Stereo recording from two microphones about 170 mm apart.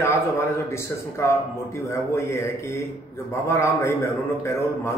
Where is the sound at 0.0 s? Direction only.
15° left (ahead or behind).